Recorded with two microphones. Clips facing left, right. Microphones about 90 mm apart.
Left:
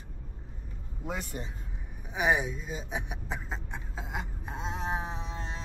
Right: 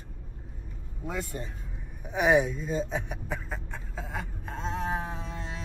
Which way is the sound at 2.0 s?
Centre (ahead or behind).